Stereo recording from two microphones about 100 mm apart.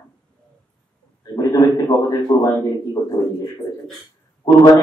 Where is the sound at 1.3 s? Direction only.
40° left (ahead or behind).